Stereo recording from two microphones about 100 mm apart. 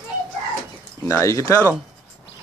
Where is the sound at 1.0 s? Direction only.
30° left (ahead or behind).